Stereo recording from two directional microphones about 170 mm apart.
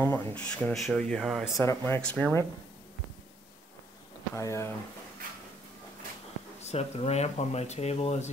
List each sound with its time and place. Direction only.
0.0 s speech: 10° left (ahead or behind)
1.6 s speech: 15° left (ahead or behind)
4.4 s speech: 15° left (ahead or behind)
6.6 s speech: 40° left (ahead or behind)